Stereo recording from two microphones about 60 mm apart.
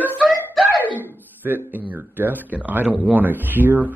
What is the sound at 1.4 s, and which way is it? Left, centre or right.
A man's voice, right.